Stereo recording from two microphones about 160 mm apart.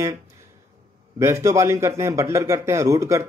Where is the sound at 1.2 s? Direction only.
20° right (ahead or behind).